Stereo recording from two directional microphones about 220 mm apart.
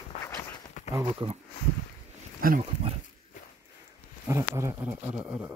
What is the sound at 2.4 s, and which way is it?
Speech, 40° right (ahead or behind).